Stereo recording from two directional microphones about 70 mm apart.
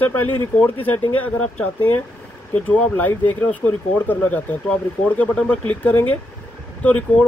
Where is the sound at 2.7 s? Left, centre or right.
Left.